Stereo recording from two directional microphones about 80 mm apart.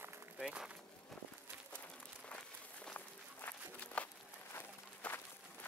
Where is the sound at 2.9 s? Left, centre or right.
Left.